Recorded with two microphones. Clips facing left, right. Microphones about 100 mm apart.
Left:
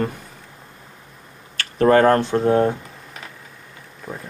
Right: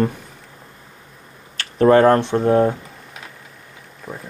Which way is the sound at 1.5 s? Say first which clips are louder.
Right 2 dB; 5° right (ahead or behind).